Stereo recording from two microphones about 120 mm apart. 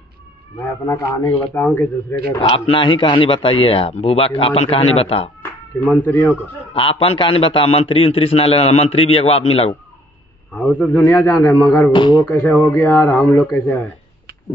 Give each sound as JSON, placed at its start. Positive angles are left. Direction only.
{"t": 0.6, "sound": "a man's voice", "side_deg": 25}
{"t": 1.2, "sound": "a man's voice", "side_deg": 15}
{"t": 2.4, "sound": "a man's voice", "side_deg": 45}
{"t": 5.9, "sound": "a man's voice", "side_deg": 20}
{"t": 6.7, "sound": "a man's voice", "side_deg": 50}
{"t": 10.5, "sound": "a man's voice", "side_deg": 10}
{"t": 10.9, "sound": "a man's voice", "side_deg": 20}
{"t": 11.9, "sound": "speech", "side_deg": 40}
{"t": 12.3, "sound": "a man's voice", "side_deg": 10}